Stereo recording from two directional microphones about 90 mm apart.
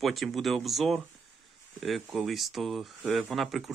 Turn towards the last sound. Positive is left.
turn(degrees=0)  # may be behind; listen again after turning